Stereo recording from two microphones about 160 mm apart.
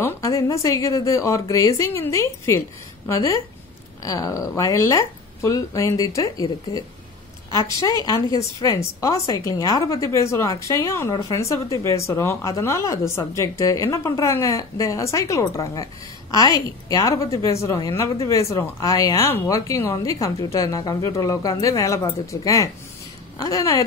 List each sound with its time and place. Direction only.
0.0 s a woman's voice: 20° left (ahead or behind)